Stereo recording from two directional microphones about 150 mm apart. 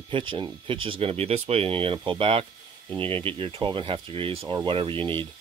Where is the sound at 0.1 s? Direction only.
35° right (ahead or behind).